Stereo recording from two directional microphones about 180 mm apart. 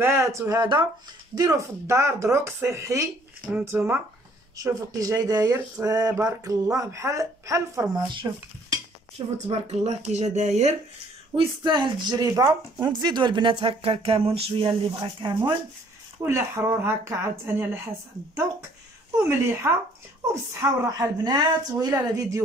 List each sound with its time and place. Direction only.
0.0 s speech: 15° right (ahead or behind)
9.5 s speech: 35° right (ahead or behind)
11.3 s speech: 25° right (ahead or behind)
16.2 s speech: 15° right (ahead or behind)